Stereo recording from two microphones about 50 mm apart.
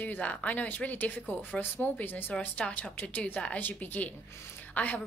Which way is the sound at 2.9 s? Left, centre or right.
Left.